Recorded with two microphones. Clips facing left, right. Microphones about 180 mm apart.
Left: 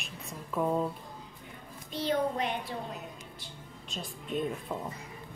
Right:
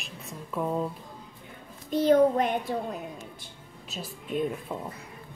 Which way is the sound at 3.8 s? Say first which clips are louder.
Right 2 dB; 5° right (ahead or behind).